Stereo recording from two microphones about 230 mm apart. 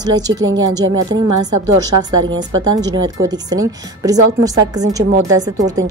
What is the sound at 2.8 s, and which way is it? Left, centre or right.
A woman's voice, centre.